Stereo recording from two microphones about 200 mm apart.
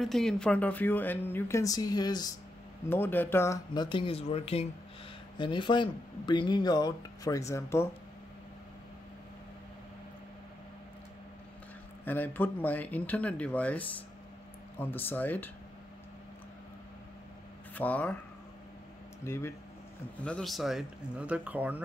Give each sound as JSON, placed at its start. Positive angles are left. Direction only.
{"t": 0.0, "sound": "speech", "side_deg": 0}
{"t": 12.0, "sound": "speech", "side_deg": 10}
{"t": 17.7, "sound": "speech", "side_deg": 5}
{"t": 19.2, "sound": "speech", "side_deg": 10}
{"t": 20.2, "sound": "a man's voice", "side_deg": 0}